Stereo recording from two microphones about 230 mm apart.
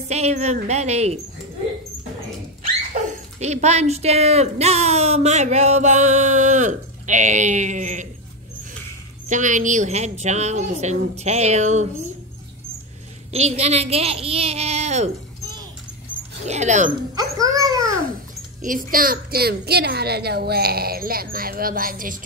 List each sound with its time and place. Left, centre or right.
0.1 s a woman's voice: right
2.9 s speech: right
9.3 s a woman's voice: right
13.3 s a woman's voice: right
16.4 s speech: right
17.1 s a sound: centre
18.6 s speech: right